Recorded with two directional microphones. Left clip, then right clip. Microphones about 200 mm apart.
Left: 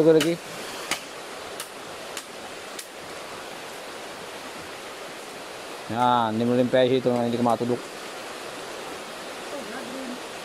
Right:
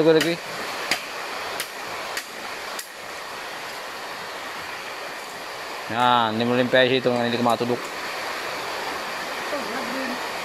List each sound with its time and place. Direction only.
0.0 s speech: 20° left (ahead or behind)
5.9 s speech: 15° left (ahead or behind)